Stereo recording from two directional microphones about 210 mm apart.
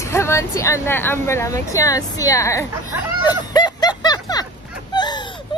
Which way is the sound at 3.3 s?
20° left (ahead or behind).